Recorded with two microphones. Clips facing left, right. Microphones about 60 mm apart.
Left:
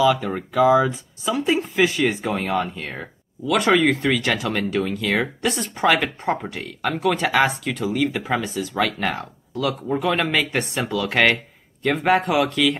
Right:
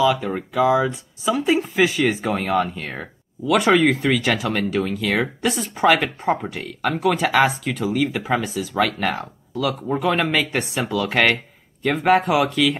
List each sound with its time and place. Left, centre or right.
0.0 s speech: centre